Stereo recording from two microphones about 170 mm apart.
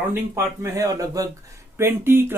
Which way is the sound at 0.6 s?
20° right (ahead or behind).